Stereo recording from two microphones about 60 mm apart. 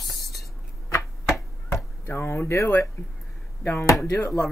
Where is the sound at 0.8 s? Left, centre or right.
Left.